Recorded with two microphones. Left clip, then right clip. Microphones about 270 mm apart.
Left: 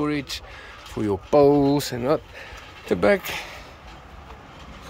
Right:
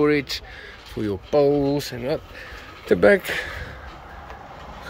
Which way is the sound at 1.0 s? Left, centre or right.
Centre.